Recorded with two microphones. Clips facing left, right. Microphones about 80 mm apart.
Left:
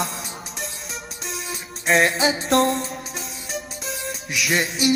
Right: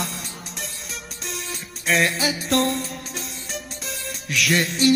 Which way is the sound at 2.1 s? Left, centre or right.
Left.